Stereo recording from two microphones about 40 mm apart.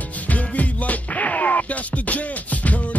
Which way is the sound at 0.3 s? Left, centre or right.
Left.